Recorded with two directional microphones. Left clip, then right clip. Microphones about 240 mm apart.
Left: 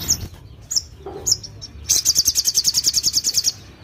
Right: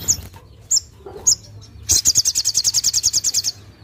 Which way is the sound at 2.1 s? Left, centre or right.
Centre.